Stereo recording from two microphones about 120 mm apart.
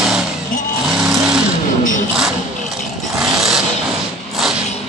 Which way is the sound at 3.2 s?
5° right (ahead or behind).